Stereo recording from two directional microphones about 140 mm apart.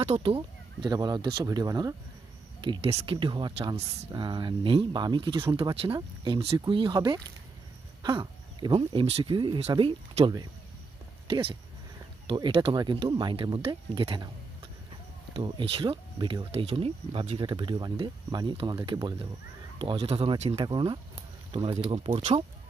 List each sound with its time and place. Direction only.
0.0 s speech: 45° right (ahead or behind)
15.3 s speech: 35° right (ahead or behind)
20.6 s speech: 35° right (ahead or behind)